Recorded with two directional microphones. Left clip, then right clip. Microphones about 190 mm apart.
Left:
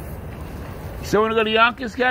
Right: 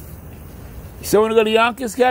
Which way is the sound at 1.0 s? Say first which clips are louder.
Right 4 dB; 65° right (ahead or behind).